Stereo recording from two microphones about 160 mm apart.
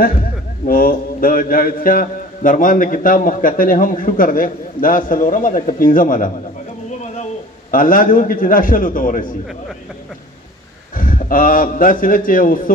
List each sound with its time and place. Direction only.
0.7 s a man's voice: 65° left (ahead or behind)
7.7 s a man's voice: 60° left (ahead or behind)
11.0 s a man's voice: 60° left (ahead or behind)